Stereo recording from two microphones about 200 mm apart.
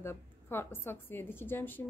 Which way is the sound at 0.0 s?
10° left (ahead or behind).